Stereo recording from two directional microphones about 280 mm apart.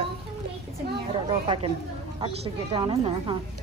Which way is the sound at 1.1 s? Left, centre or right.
Centre.